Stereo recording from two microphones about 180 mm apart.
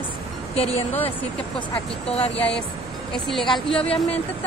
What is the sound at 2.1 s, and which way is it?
Speech, 30° left (ahead or behind).